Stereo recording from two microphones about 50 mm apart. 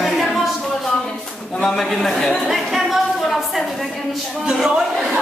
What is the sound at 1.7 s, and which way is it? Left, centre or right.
Speech, centre.